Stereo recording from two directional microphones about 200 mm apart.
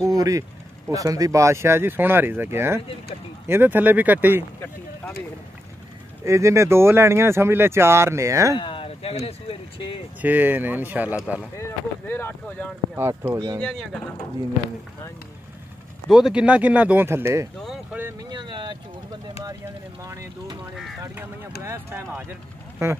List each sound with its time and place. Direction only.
0.0 s speech: 15° right (ahead or behind)
6.2 s speech: 15° right (ahead or behind)
8.5 s speech: 25° left (ahead or behind)
10.2 s speech: 10° right (ahead or behind)
12.1 s speech: 10° left (ahead or behind)
12.9 s speech: 10° right (ahead or behind)
13.6 s speech: 5° left (ahead or behind)
16.1 s speech: 5° right (ahead or behind); by 18.8 s 25° right (ahead or behind)
20.0 s speech: 15° right (ahead or behind)